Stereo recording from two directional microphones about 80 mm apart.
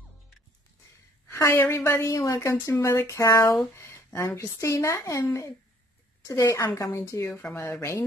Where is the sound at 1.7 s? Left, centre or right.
Left.